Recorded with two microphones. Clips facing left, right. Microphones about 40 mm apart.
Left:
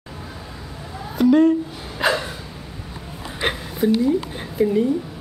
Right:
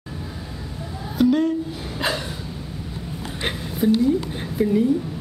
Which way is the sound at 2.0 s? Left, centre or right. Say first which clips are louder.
Left 5 dB; centre.